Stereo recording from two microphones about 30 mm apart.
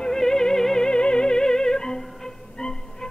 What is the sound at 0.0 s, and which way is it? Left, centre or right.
Music, centre.